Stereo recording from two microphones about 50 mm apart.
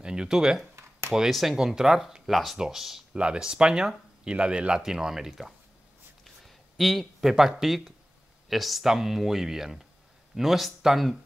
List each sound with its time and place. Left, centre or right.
0.0 s speech: centre
1.3 s speech: centre
3.2 s speech: centre